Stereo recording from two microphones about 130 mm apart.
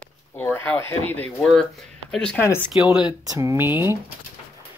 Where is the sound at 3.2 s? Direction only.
25° right (ahead or behind).